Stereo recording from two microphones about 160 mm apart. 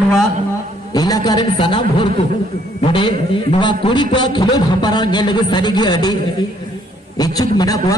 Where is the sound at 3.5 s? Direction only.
30° left (ahead or behind).